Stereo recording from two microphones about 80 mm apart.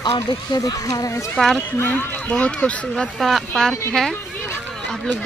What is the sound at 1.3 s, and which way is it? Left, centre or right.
Speech, centre.